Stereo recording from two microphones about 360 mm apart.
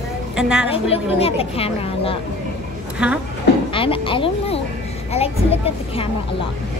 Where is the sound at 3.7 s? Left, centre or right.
Centre.